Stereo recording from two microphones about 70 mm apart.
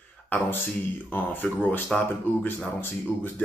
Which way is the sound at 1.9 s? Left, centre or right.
Centre.